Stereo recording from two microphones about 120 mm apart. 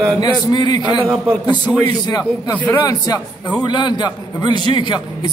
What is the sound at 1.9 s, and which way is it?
A man's voice, 35° left (ahead or behind).